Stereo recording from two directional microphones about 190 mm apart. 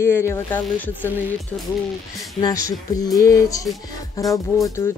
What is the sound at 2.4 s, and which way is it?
Speech, 20° left (ahead or behind).